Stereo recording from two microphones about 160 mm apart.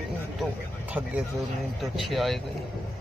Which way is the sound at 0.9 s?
10° right (ahead or behind).